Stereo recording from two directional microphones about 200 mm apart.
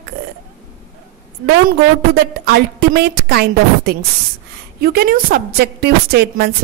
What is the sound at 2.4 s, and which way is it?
A woman's voice, 50° right (ahead or behind).